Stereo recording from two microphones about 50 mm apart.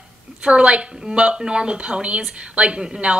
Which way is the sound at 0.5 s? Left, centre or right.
Right.